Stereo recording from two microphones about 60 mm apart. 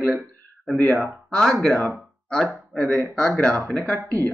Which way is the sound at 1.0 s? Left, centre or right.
Centre.